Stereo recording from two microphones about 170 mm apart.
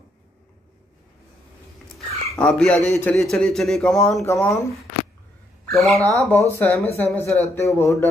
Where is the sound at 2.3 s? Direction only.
5° left (ahead or behind).